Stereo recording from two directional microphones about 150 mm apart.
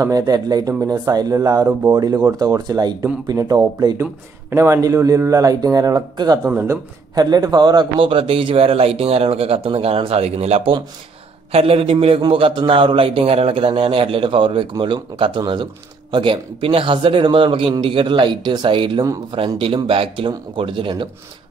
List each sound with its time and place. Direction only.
0.0 s a man's voice: 25° right (ahead or behind)
6.5 s speech: 15° right (ahead or behind)
7.2 s a man's voice: 25° right (ahead or behind)